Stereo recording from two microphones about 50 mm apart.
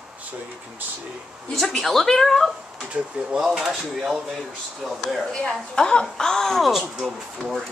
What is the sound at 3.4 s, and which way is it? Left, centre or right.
A woman's voice, centre.